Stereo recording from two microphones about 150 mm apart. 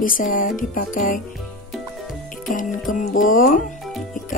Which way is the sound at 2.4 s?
60° left (ahead or behind).